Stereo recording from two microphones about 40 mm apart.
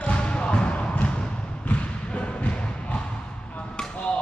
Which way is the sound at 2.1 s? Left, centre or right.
Left.